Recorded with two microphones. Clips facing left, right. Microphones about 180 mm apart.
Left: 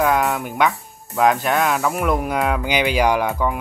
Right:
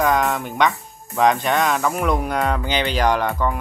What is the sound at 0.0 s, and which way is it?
Speech, 5° left (ahead or behind).